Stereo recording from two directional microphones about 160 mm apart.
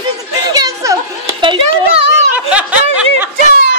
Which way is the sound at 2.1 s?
10° right (ahead or behind).